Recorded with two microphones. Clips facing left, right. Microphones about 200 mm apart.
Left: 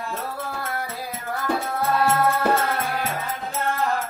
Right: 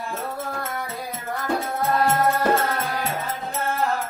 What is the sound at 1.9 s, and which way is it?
Music, 5° left (ahead or behind).